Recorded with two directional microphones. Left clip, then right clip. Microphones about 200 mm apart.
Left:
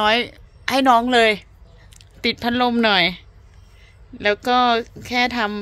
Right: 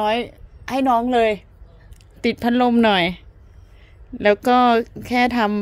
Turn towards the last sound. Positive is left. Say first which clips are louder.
# right 2 dB
turn(degrees=-20)  # may be behind; listen again after turning